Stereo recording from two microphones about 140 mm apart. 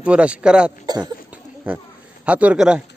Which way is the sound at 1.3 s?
10° right (ahead or behind).